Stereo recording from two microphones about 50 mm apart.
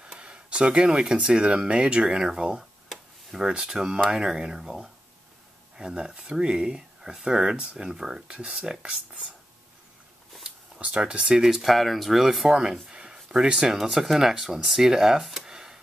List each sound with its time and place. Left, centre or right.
0.0 s speech: centre
2.9 s tick-tock: centre
3.4 s speech: centre
10.4 s speech: right
11.6 s speech: centre
12.8 s a sound: centre
13.7 s speech: centre